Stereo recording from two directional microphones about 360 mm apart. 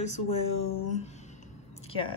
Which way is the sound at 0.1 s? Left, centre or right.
Left.